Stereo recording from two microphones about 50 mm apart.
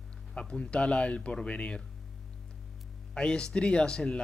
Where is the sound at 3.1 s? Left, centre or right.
Centre.